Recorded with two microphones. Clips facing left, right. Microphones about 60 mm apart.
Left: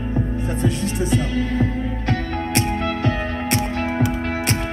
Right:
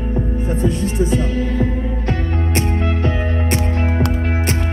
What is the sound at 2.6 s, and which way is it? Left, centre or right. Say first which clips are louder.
Music: right 1 dB; right.